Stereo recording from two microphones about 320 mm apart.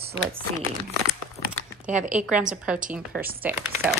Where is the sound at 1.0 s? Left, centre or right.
Right.